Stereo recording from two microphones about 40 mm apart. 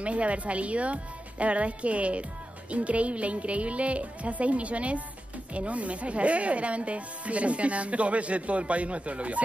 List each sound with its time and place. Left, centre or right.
0.0 s speech: right